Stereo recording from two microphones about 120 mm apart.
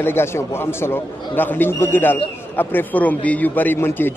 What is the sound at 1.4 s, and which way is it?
A man's voice, 20° left (ahead or behind).